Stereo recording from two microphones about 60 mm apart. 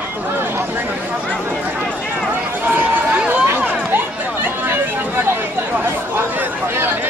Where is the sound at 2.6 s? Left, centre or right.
Right.